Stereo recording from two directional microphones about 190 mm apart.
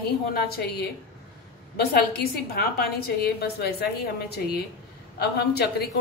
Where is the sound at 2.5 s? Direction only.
55° left (ahead or behind).